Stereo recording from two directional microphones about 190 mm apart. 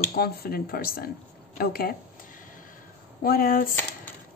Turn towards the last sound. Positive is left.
turn(degrees=45)  # may be behind; listen again after turning